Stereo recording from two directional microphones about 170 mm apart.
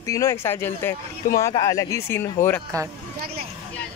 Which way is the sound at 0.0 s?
20° left (ahead or behind).